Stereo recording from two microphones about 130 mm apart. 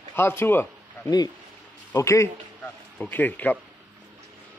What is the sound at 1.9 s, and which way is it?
A man's voice, 20° left (ahead or behind).